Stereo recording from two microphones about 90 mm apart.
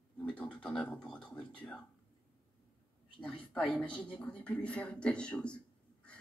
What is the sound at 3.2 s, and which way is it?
Speech, 10° left (ahead or behind).